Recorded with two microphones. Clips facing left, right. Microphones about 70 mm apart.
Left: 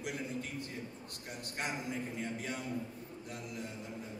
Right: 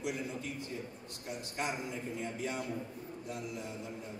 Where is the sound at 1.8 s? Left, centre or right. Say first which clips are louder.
Even; left.